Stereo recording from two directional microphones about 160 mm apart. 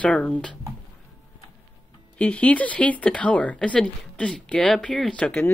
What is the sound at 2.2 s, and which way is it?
Speech, 10° left (ahead or behind).